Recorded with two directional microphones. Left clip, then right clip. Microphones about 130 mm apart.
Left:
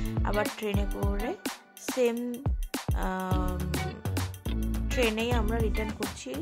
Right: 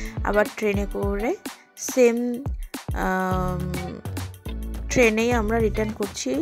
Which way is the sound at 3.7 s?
Centre (ahead or behind).